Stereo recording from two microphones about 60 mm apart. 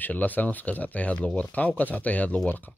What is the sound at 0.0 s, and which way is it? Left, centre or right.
Speech, left.